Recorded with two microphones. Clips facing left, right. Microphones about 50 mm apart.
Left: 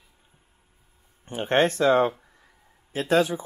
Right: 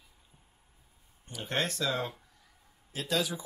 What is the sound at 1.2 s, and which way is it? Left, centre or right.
Speech, left.